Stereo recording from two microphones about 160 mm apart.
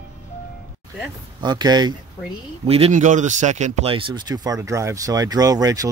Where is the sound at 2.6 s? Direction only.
40° right (ahead or behind).